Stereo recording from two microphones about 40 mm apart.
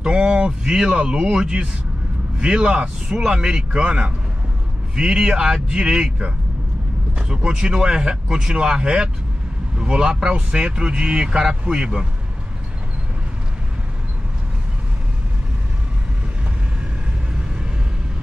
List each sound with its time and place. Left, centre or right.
0.0 s speech: centre
3.1 s speech: centre
3.5 s speech: right
7.2 s speech: centre